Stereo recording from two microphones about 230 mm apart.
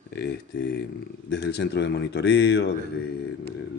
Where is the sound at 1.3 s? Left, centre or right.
Left.